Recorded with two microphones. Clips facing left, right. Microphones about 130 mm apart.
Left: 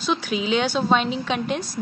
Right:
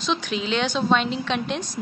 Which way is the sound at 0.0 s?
5° left (ahead or behind).